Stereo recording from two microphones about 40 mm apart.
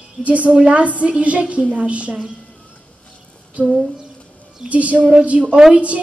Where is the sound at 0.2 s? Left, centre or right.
Right.